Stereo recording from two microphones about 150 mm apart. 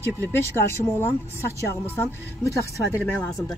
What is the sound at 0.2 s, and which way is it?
Speech, 15° left (ahead or behind).